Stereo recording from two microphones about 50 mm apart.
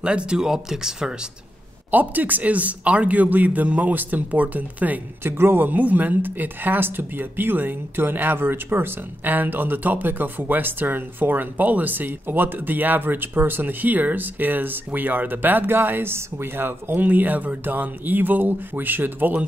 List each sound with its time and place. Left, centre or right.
0.0 s speech: right
1.9 s speech: right
5.2 s speech: right
17.0 s speech: right